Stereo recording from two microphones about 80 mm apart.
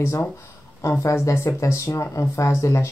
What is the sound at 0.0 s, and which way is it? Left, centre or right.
Speech, left.